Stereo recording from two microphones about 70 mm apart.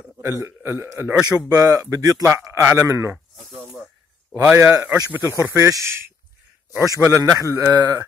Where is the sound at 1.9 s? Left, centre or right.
Right.